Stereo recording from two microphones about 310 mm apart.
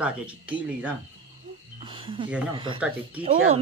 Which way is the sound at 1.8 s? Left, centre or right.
Centre.